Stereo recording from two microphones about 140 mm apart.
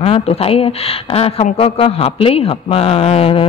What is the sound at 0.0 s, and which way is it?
A woman's voice, 45° left (ahead or behind).